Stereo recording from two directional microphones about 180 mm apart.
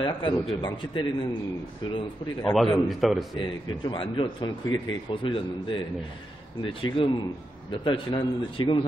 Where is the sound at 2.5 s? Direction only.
Centre (ahead or behind).